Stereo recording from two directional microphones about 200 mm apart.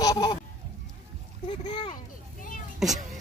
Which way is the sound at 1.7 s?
25° left (ahead or behind).